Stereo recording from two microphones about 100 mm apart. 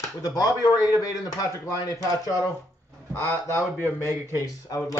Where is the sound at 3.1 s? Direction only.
25° left (ahead or behind).